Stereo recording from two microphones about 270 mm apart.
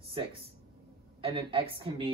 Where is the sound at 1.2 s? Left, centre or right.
Centre.